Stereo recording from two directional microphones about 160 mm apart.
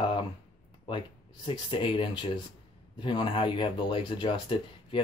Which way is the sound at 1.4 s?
30° left (ahead or behind).